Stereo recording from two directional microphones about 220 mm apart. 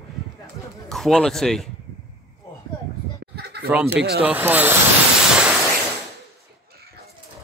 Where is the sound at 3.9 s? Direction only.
45° right (ahead or behind).